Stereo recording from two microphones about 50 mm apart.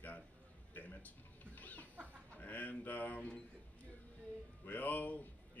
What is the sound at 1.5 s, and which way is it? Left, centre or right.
Chicken, left.